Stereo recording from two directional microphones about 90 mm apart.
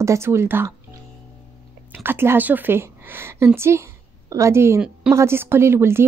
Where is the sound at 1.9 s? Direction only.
25° right (ahead or behind).